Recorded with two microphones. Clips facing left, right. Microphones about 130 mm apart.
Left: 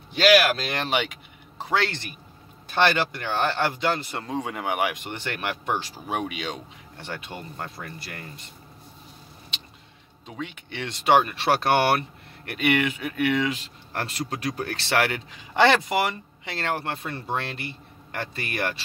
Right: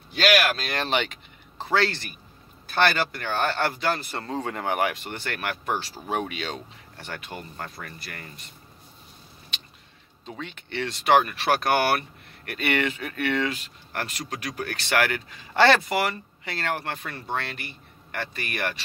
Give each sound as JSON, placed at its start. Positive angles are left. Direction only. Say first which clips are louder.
{"t": 0.1, "sound": "speech", "louder": "left 3 dB", "side_deg": 25}
{"t": 0.8, "sound": "a man's voice", "louder": "even", "side_deg": 10}
{"t": 10.3, "sound": "speech", "louder": "right 1 dB", "side_deg": 10}
{"t": 10.9, "sound": "speech", "louder": "left 1 dB", "side_deg": 25}
{"t": 12.4, "sound": "speech", "louder": "left 2 dB", "side_deg": 15}
{"t": 13.9, "sound": "speech", "louder": "left 2 dB", "side_deg": 30}